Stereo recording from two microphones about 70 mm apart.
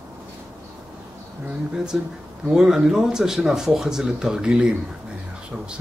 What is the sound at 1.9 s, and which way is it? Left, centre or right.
Speech, centre.